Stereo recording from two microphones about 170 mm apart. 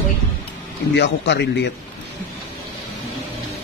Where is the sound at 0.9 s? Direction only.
90° left.